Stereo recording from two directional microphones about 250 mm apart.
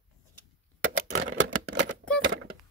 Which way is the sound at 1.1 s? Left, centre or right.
Right.